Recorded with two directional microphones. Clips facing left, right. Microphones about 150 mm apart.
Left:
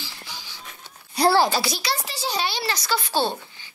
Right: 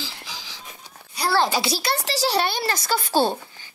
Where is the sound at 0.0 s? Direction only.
90° right.